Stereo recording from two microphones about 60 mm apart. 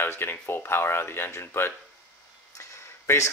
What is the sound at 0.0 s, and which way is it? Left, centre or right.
Speech, left.